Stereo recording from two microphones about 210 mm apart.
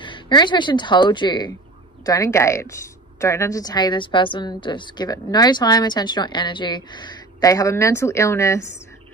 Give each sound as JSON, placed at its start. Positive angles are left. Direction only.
{"t": 0.0, "sound": "a woman's voice", "side_deg": 20}